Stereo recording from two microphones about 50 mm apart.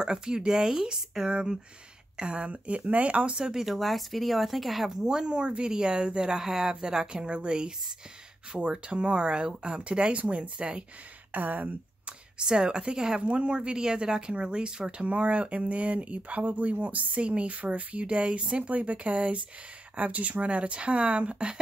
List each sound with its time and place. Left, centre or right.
0.0 s speech: centre
3.3 s speech: centre
3.6 s speech: centre; by 10.9 s right
11.3 s speech: right
12.4 s speech: centre